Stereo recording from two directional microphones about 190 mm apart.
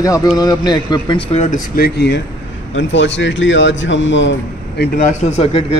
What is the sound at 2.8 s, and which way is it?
A man's voice, 70° left (ahead or behind).